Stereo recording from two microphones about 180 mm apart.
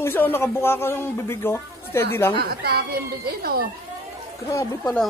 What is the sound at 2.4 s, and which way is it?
Speech, 60° right (ahead or behind).